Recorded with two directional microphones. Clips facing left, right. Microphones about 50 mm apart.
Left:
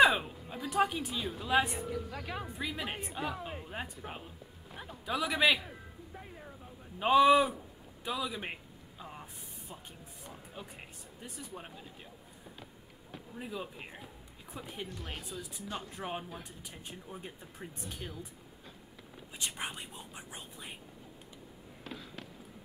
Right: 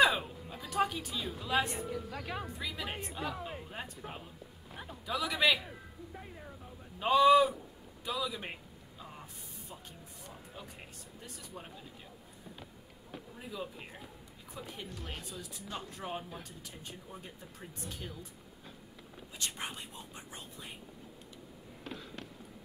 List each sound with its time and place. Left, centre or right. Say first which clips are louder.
0.0 s a sound: left 3 dB; centre
1.2 s speech: left 3 dB; centre
4.6 s speech: even; centre
5.0 s speech: left 1 dB; centre
7.0 s a man's voice: even; centre
8.3 s a sound: left 2 dB; centre
11.1 s speech: left 3 dB; centre
13.4 s speech: left 2 dB; centre
14.9 s speech: left 1 dB; centre
15.5 s speech: left 1 dB; centre
19.3 s speech: left 1 dB; centre
21.8 s a sound: right 1 dB; centre